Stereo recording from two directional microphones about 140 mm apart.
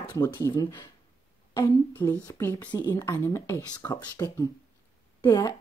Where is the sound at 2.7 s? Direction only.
30° left (ahead or behind).